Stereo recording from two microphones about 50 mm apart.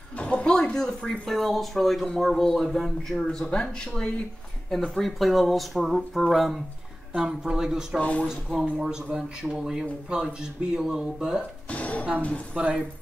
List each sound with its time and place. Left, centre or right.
0.2 s a sound: left
0.5 s speech: centre
7.2 s speech: centre
8.0 s speech: left
8.3 s speech: centre
11.7 s music: left
12.6 s speech: right